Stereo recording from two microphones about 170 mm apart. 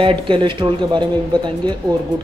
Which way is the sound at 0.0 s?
30° right (ahead or behind).